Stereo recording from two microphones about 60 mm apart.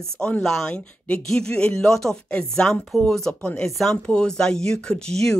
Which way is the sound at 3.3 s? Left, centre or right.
Centre.